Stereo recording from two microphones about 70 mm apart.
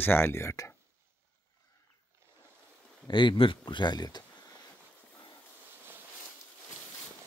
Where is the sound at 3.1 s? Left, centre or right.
Left.